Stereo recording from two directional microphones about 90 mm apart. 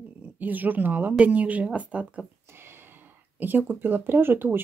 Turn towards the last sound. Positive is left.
turn(degrees=-25)  # may be behind; listen again after turning